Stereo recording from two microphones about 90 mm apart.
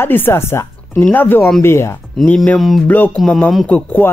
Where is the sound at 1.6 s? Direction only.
30° left (ahead or behind).